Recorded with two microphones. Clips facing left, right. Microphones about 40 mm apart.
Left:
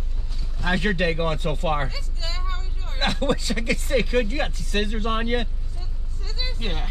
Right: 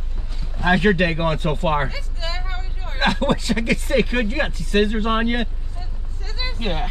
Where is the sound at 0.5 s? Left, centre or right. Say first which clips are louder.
Right 7 dB; right.